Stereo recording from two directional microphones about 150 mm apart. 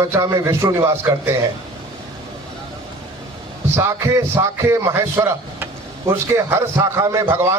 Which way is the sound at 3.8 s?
20° right (ahead or behind).